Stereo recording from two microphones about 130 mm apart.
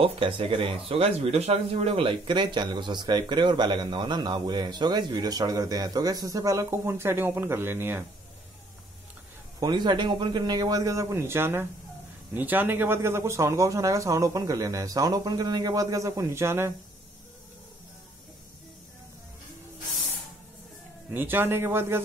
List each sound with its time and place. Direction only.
0.0 s speech: 45° right (ahead or behind); by 8.0 s 15° right (ahead or behind)
9.6 s speech: 35° right (ahead or behind)
21.1 s speech: 15° right (ahead or behind)